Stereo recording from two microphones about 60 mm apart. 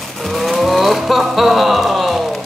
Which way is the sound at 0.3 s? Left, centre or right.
Centre.